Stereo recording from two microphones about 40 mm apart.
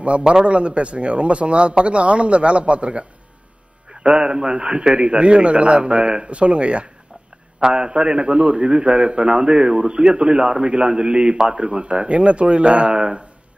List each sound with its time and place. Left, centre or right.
0.2 s a man's voice: centre
0.5 s speech: right
3.9 s a man's voice: right